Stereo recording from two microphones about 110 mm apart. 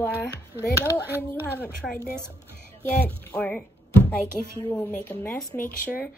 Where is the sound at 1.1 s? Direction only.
20° right (ahead or behind).